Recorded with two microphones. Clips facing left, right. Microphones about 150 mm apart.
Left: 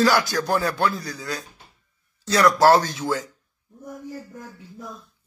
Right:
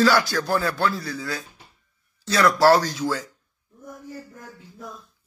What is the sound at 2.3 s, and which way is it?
A man's voice, 20° left (ahead or behind).